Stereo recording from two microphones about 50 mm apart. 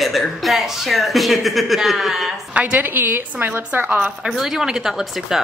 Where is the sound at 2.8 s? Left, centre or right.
Right.